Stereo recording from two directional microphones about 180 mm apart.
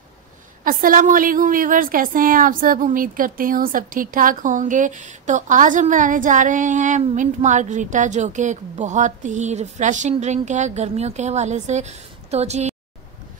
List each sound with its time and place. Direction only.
0.7 s a woman's voice: 50° right (ahead or behind)